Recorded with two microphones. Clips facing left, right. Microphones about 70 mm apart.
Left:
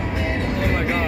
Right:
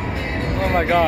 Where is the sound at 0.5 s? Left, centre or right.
Right.